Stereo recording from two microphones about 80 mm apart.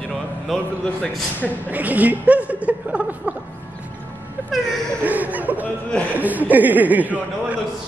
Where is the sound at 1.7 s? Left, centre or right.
Right.